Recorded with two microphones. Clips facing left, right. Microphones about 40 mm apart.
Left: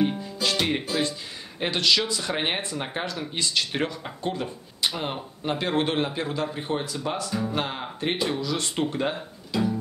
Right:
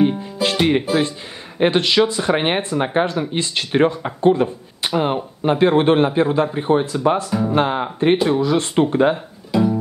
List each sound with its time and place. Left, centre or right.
0.2 s music: right
0.6 s music: centre
1.6 s speech: right
9.1 s guitar: centre